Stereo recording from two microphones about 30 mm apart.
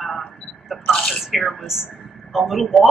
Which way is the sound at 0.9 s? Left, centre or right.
Centre.